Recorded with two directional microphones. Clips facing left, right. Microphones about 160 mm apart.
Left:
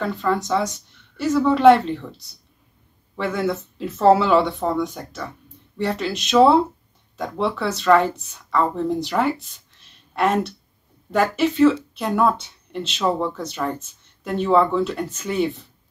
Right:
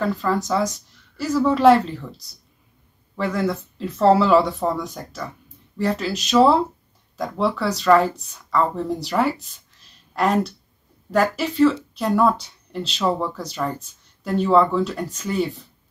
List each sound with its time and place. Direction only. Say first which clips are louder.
0.0 s speech: even; centre (ahead or behind)
3.2 s speech: even; centre (ahead or behind)
9.4 s a sound: even; 40° right (ahead or behind)
10.1 s speech: even; centre (ahead or behind)
14.4 s speech: even; centre (ahead or behind)